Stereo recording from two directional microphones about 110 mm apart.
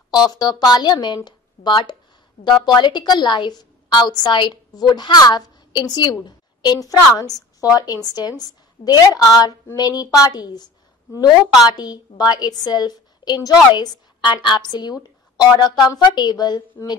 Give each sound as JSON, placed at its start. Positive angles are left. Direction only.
{"t": 0.1, "sound": "a woman's voice", "side_deg": 35}